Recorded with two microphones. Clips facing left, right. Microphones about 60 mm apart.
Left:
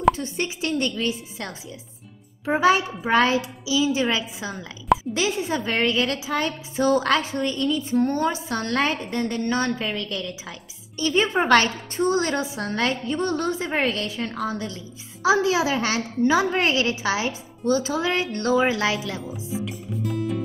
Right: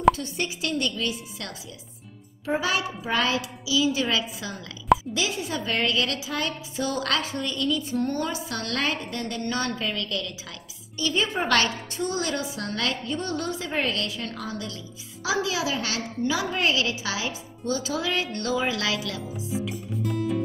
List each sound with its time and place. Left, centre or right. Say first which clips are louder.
0.1 s a woman's voice: left 2 dB; left
4.5 s speech: even; centre
4.9 s a woman's voice: left 3 dB; left
11.0 s a woman's voice: left 5 dB; left
13.0 s a woman's voice: left 5 dB; left
19.6 s music: left 1 dB; centre